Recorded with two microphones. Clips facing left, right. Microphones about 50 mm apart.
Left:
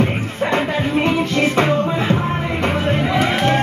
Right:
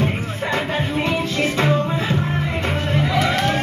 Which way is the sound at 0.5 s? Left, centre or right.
Left.